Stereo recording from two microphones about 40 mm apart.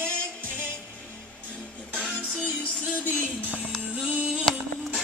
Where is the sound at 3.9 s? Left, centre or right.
Right.